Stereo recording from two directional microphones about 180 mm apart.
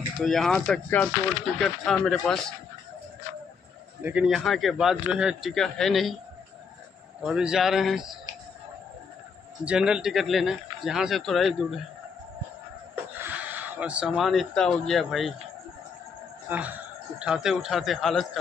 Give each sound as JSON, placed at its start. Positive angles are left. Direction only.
{"t": 0.2, "sound": "a man's voice", "side_deg": 0}
{"t": 4.0, "sound": "a man's voice", "side_deg": -5}
{"t": 7.2, "sound": "a man's voice", "side_deg": -5}
{"t": 9.7, "sound": "a man's voice", "side_deg": -5}
{"t": 13.2, "sound": "speech", "side_deg": -10}
{"t": 16.4, "sound": "a man's voice", "side_deg": -10}